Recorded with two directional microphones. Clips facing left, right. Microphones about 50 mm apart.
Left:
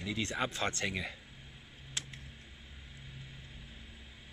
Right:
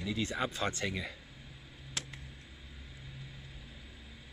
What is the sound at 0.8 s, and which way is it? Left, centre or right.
Speech, left.